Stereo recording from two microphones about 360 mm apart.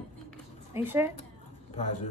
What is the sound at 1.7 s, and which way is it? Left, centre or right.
Speech, centre.